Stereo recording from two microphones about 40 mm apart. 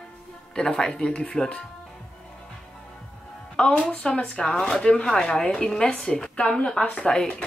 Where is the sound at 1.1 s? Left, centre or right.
Left.